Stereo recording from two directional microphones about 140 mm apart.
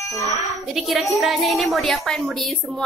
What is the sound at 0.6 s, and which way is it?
A woman's voice, centre (ahead or behind).